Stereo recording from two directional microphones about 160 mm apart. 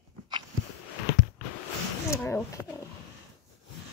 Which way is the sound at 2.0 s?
15° left (ahead or behind).